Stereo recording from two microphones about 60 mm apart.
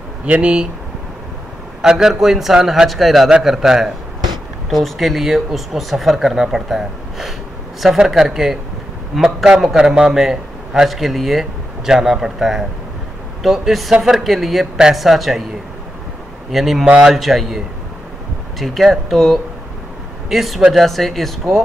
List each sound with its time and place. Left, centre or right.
0.2 s a man's voice: centre
1.8 s a man's voice: centre
16.5 s speech: centre
18.6 s speech: centre